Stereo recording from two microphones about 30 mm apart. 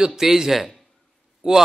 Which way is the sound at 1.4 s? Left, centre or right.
Right.